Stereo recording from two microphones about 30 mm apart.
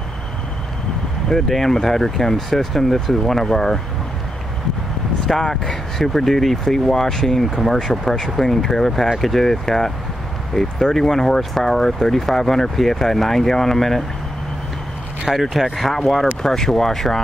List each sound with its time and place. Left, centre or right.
1.5 s speech: centre
5.2 s speech: centre
15.5 s speech: centre